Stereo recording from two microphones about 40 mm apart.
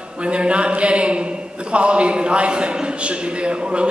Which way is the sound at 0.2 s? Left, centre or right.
Right.